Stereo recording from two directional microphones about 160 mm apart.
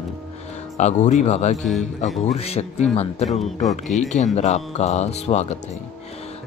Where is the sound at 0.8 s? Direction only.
45° left (ahead or behind).